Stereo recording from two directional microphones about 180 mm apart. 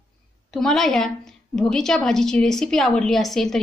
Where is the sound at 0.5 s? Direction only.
5° left (ahead or behind).